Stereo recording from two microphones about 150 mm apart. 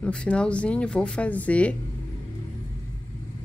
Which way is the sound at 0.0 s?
5° left (ahead or behind).